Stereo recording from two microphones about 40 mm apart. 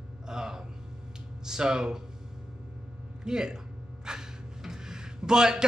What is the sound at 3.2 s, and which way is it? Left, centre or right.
Speech, centre.